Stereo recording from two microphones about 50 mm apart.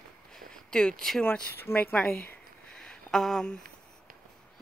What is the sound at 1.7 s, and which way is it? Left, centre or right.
Speech, left.